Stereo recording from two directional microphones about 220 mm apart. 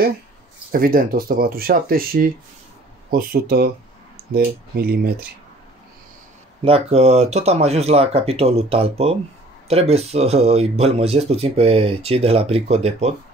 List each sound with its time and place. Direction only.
0.7 s speech: 40° right (ahead or behind)
6.6 s speech: 25° right (ahead or behind)